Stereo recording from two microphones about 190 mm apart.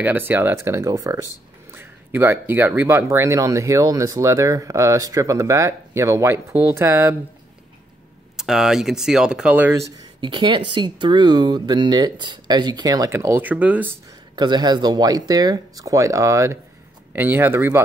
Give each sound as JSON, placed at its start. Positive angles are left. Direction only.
{"t": 0.0, "sound": "speech", "side_deg": -10}
{"t": 8.4, "sound": "speech", "side_deg": 0}
{"t": 10.2, "sound": "speech", "side_deg": -25}
{"t": 14.3, "sound": "speech", "side_deg": -20}